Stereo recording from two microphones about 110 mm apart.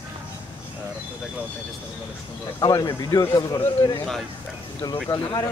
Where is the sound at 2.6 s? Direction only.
40° left (ahead or behind).